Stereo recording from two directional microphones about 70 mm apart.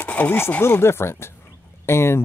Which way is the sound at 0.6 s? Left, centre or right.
Left.